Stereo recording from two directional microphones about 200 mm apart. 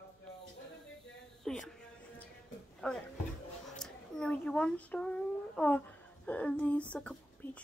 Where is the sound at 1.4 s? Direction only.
Centre (ahead or behind).